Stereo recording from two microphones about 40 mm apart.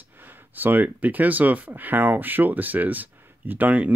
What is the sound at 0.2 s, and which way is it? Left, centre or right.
Speech, right.